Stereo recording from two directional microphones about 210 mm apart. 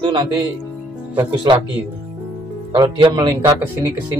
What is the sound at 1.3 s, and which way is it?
Speech, 20° right (ahead or behind).